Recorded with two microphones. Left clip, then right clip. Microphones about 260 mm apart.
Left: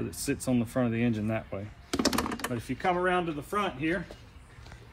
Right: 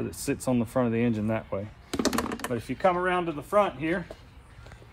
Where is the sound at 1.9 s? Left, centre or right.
Centre.